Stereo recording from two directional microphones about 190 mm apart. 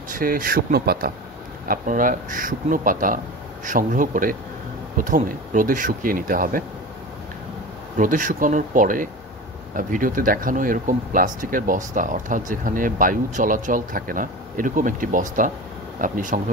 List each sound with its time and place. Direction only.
0.1 s speech: 50° right (ahead or behind)
8.0 s speech: 45° right (ahead or behind)